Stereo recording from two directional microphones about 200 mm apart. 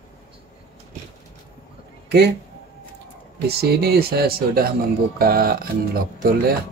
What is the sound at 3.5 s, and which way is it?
Speech, 55° right (ahead or behind).